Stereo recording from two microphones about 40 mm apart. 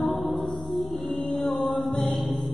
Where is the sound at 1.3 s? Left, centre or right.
Centre.